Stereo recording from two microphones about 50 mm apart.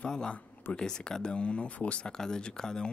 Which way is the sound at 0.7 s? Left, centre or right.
Centre.